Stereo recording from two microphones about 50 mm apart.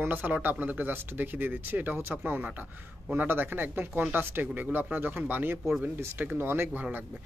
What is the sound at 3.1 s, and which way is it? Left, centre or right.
Speech, right.